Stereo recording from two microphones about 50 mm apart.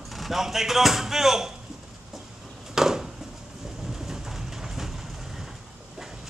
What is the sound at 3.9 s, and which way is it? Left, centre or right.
Vehicle, centre.